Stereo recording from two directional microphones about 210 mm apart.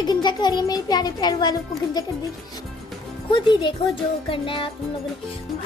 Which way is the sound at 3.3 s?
20° left (ahead or behind).